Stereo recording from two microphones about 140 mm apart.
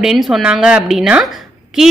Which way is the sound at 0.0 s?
Centre (ahead or behind).